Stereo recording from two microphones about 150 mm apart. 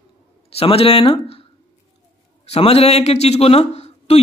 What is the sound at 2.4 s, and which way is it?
A man's voice, 45° left (ahead or behind).